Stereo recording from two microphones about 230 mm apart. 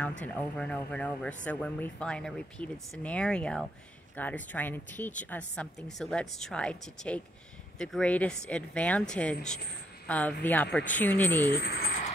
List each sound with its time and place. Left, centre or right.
0.2 s speech: centre
11.5 s speech: left